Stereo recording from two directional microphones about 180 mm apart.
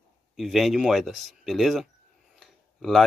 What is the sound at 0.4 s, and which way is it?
Speech, centre (ahead or behind).